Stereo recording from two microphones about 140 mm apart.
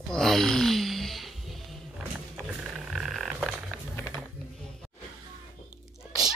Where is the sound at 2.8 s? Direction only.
Centre (ahead or behind).